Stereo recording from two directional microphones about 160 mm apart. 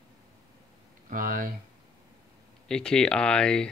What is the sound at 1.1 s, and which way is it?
Speech, 60° right (ahead or behind).